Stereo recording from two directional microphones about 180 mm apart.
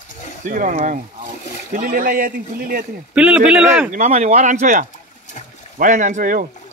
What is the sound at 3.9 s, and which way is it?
Speech, 40° right (ahead or behind).